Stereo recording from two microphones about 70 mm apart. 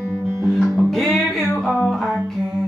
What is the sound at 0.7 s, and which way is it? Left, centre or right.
Music, centre.